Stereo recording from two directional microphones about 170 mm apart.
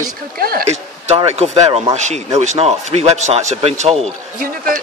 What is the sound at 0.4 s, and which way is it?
Speech, 60° right (ahead or behind).